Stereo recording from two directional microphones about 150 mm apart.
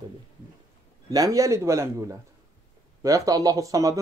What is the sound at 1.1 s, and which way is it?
Speech, 25° right (ahead or behind).